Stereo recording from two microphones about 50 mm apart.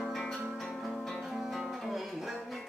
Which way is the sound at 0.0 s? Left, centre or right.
Centre.